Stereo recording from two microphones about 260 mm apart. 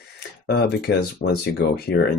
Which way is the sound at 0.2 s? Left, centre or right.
Left.